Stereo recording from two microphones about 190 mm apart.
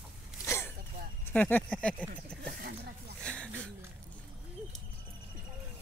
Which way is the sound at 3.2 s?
5° left (ahead or behind).